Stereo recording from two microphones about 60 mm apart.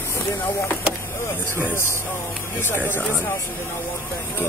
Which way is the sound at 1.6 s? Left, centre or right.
Left.